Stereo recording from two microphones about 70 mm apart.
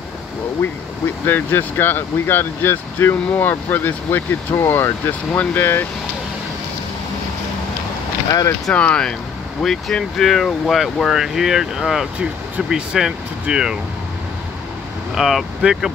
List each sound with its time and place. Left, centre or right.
1.2 s speech: left
8.3 s speech: left
8.7 s speech: centre
15.1 s speech: centre